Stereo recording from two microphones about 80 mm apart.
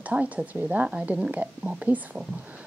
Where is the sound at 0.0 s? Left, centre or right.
Centre.